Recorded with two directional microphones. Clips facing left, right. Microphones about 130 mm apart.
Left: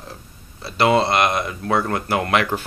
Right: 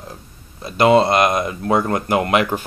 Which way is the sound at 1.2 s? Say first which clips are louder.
Right 3 dB; 20° right (ahead or behind).